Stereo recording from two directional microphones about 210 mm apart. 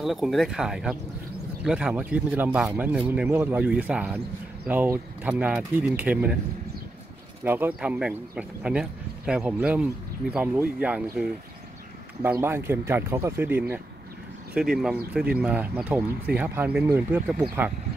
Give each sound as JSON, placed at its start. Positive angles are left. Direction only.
{"t": 0.0, "sound": "speech", "side_deg": 0}
{"t": 7.4, "sound": "speech", "side_deg": -10}